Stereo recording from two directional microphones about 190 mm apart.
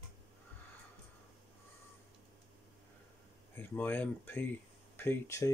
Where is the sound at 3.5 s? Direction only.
10° left (ahead or behind).